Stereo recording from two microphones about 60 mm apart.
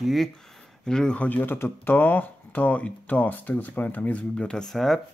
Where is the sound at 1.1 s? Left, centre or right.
Left.